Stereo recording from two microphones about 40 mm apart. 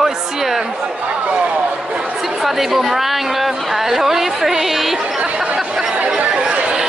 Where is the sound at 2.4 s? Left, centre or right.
Centre.